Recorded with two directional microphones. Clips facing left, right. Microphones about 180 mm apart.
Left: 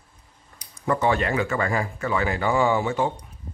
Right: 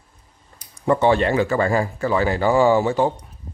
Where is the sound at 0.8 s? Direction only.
25° right (ahead or behind).